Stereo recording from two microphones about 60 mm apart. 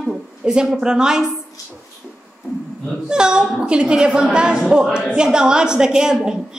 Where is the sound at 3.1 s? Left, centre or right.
Centre.